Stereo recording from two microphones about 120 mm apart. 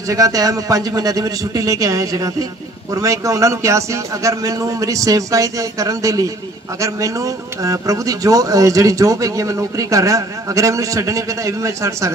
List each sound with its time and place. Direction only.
0.1 s speech: 30° right (ahead or behind)